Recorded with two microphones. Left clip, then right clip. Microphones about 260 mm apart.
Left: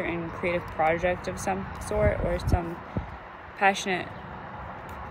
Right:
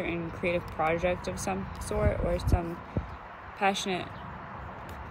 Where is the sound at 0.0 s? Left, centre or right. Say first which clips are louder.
Left 2 dB; left.